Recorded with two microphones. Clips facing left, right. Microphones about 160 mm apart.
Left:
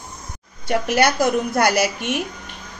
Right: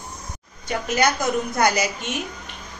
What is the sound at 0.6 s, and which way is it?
A woman's voice, 65° left (ahead or behind).